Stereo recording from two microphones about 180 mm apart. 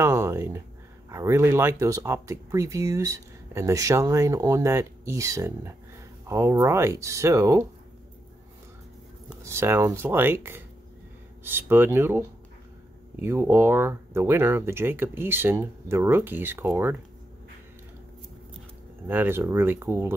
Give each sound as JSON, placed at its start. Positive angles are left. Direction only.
{"t": 0.0, "sound": "a sound", "side_deg": -15}
{"t": 1.1, "sound": "speech", "side_deg": -15}
{"t": 9.4, "sound": "speech", "side_deg": -15}
{"t": 19.0, "sound": "speech", "side_deg": -10}